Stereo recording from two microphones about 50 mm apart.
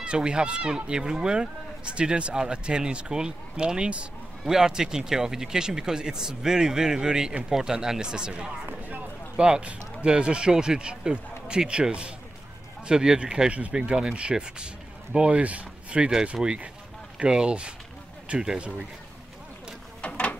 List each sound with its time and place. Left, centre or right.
0.0 s speech: right
13.7 s speech: centre
17.2 s speech: centre
20.0 s a sound: left